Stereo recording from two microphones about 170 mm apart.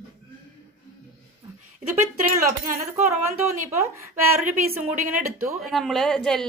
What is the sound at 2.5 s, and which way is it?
Speech, 55° right (ahead or behind).